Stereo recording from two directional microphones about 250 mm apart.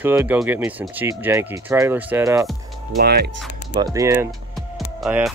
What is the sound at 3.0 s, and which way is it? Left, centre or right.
Speech, right.